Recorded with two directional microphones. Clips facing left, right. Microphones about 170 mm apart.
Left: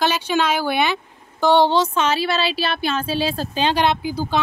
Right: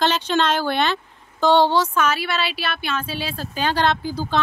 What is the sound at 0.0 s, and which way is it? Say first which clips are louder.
Speech: even; 10° left (ahead or behind).